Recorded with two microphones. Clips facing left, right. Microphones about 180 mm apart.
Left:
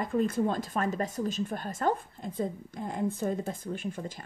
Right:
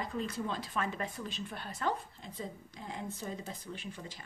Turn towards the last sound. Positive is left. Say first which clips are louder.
# left 9 dB
turn(degrees=50)  # may be behind; listen again after turning